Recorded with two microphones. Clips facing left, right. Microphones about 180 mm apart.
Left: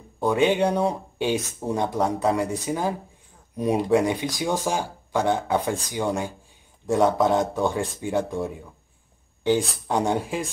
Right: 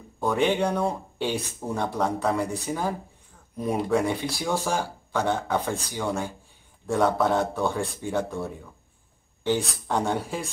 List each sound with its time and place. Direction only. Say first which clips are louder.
0.2 s speech: left 3 dB; 15° left (ahead or behind)